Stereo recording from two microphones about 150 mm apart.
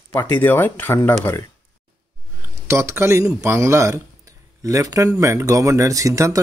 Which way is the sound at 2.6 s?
20° right (ahead or behind).